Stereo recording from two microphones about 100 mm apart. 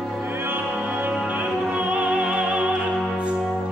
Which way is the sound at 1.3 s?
15° right (ahead or behind).